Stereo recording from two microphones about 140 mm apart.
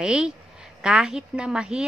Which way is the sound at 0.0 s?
5° right (ahead or behind).